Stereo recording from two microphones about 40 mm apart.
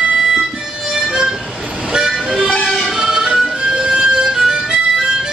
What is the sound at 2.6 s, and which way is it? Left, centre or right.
Music, centre.